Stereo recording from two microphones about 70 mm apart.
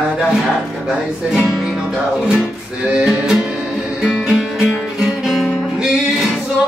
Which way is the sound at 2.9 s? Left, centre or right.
Centre.